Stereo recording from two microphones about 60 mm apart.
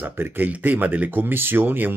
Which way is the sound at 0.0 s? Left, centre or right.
Right.